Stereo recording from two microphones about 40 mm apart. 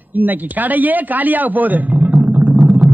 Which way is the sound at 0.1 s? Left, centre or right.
Right.